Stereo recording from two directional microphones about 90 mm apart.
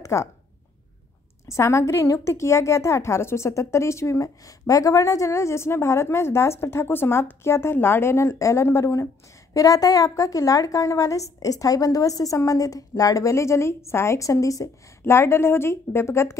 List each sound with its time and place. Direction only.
0.0 s speech: 35° left (ahead or behind)
1.5 s a woman's voice: 30° left (ahead or behind)